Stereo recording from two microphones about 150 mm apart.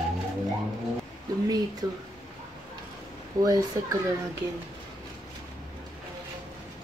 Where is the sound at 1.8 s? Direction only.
20° right (ahead or behind).